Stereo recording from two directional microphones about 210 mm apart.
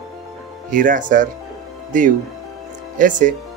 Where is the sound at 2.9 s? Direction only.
40° right (ahead or behind).